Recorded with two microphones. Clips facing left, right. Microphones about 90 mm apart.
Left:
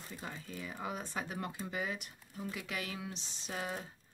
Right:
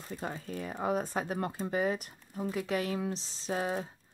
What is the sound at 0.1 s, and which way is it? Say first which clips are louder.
Speech: right 8 dB; 45° right (ahead or behind).